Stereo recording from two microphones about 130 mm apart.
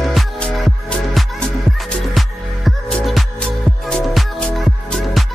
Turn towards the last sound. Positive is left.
turn(degrees=5)  # may be behind; listen again after turning